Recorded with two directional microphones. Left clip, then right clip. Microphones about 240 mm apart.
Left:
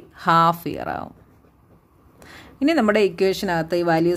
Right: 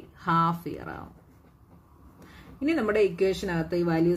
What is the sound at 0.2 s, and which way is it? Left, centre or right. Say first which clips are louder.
Speech: left 9 dB; left.